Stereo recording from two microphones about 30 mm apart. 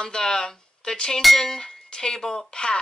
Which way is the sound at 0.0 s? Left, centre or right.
Left.